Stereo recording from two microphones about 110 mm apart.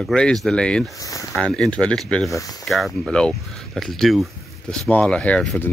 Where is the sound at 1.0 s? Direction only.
30° left (ahead or behind).